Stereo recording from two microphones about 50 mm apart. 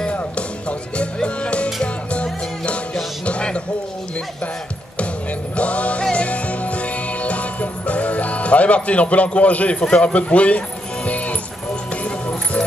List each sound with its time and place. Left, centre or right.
0.7 s music: left
5.6 s music: left
12.0 s music: left